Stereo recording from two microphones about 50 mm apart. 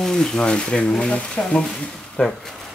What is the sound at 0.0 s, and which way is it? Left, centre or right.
Speech, centre.